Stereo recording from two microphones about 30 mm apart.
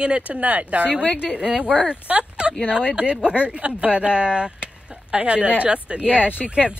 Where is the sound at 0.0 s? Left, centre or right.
Right.